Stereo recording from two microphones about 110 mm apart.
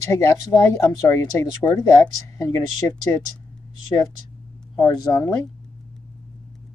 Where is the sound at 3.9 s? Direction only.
25° left (ahead or behind).